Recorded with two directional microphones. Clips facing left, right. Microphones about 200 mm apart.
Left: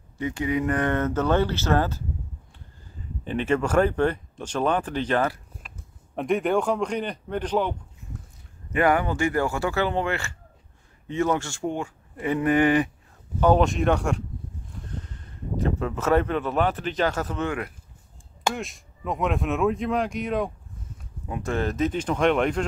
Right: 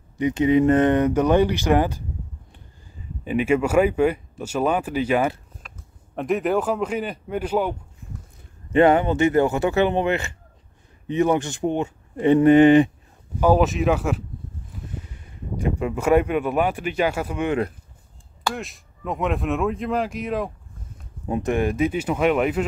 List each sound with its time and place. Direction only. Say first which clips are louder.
0.2 s speech: right 8 dB; 20° right (ahead or behind)
3.3 s speech: right 4 dB; 10° right (ahead or behind)
8.7 s speech: right 6 dB; 25° right (ahead or behind)
13.4 s speech: right 2 dB; 5° right (ahead or behind)
18.5 s speech: right 1 dB; centre (ahead or behind)
21.3 s speech: right 5 dB; 20° right (ahead or behind)